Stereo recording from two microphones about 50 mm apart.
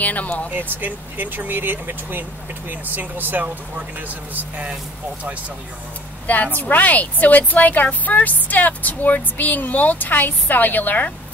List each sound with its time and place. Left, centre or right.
0.0 s a woman's voice: left
0.6 s speech: right
6.2 s a woman's voice: left